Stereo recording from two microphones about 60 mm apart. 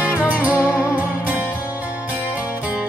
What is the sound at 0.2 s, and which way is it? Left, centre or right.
Music, right.